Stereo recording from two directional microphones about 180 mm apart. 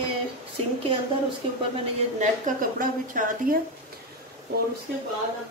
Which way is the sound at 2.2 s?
45° right (ahead or behind).